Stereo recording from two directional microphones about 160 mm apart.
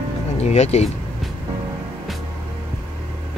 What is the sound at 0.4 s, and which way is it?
Speech, 45° left (ahead or behind).